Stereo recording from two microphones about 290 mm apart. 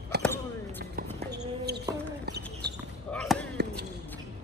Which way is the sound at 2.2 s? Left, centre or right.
Right.